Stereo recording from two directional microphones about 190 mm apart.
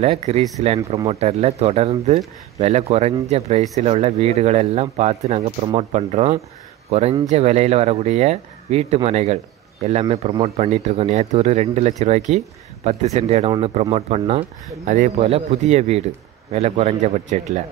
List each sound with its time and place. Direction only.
0.0 s speech: 35° right (ahead or behind)